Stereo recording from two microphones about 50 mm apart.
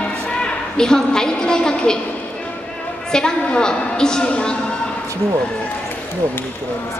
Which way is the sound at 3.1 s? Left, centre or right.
Centre.